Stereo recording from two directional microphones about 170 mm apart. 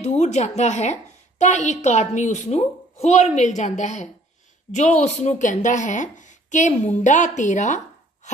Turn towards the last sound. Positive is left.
turn(degrees=45)  # may be behind; listen again after turning